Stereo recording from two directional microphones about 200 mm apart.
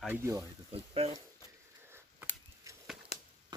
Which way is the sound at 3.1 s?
35° left (ahead or behind).